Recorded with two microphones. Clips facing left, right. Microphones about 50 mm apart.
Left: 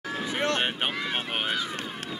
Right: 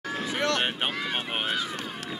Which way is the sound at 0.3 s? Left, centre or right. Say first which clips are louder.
Even; centre.